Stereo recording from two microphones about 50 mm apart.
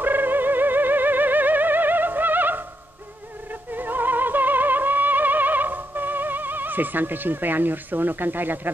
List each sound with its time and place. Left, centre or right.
0.0 s music: right
3.7 s music: right